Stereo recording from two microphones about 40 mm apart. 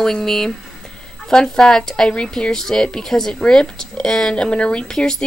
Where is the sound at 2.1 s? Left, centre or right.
Left.